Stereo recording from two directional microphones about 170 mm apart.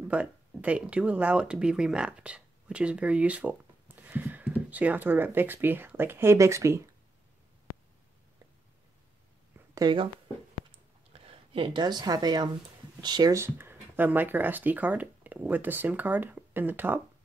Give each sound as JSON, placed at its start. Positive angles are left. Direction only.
{"t": 0.1, "sound": "speech", "side_deg": -10}
{"t": 9.8, "sound": "speech", "side_deg": -25}
{"t": 11.1, "sound": "speech", "side_deg": -35}